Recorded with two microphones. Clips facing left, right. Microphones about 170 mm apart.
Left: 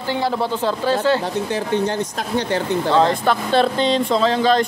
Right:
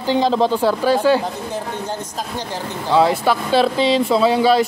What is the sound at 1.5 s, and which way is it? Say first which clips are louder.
Speech: left 5 dB; 70° left (ahead or behind).